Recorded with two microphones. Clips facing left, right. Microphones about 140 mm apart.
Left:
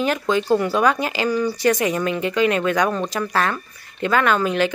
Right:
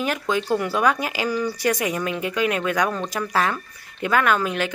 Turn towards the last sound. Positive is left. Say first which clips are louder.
# left 3 dB
turn(degrees=-5)  # may be behind; listen again after turning